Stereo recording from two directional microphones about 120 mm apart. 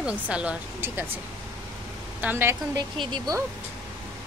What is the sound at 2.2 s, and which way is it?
Speech, 15° right (ahead or behind).